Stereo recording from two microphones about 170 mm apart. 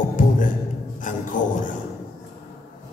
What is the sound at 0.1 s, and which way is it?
Music, 50° left (ahead or behind).